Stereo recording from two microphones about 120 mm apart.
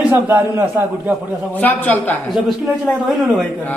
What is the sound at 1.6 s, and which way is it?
Speech, 15° left (ahead or behind).